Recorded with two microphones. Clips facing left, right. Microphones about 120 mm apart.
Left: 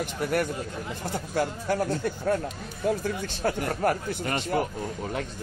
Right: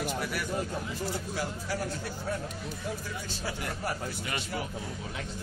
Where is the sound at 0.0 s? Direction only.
55° left (ahead or behind).